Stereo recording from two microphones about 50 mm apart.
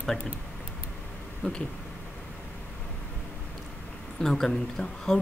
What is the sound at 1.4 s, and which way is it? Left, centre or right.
Speech, left.